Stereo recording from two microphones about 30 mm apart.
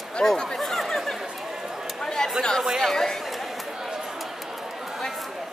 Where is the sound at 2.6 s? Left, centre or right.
Centre.